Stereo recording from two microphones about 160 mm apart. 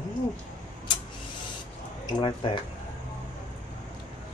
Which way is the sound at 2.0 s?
30° left (ahead or behind).